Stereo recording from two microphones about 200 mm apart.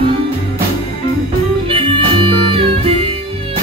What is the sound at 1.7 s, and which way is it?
Music, 25° right (ahead or behind).